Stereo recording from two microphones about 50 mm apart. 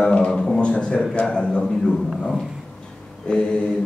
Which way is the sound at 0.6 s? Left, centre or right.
Left.